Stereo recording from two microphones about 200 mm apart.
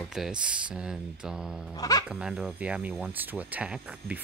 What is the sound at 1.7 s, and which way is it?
Speech, 20° left (ahead or behind).